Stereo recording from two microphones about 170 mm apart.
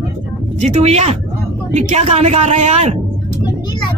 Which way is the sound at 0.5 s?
40° right (ahead or behind).